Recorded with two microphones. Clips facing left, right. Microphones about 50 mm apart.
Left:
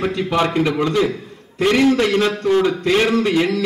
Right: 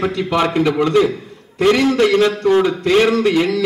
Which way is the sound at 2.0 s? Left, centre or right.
Centre.